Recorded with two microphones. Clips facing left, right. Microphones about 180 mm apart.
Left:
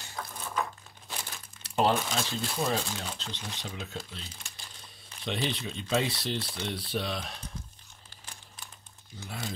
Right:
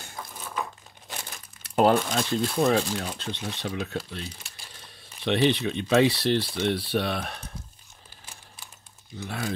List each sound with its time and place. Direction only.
0.2 s a sound: 10° right (ahead or behind)
1.6 s speech: 55° right (ahead or behind)
9.2 s speech: 70° right (ahead or behind)